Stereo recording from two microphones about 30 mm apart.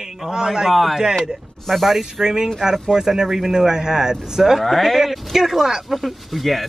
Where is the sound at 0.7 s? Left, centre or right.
Centre.